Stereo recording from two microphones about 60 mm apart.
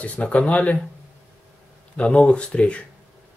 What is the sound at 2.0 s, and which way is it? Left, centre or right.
Speech, centre.